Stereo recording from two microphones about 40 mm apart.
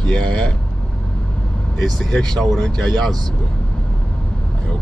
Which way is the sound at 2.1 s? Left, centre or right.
Centre.